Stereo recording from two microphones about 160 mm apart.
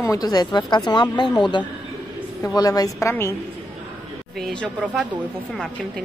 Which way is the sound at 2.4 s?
25° left (ahead or behind).